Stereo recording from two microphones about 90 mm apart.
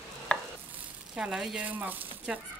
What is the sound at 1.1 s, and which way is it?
Speech, 5° right (ahead or behind).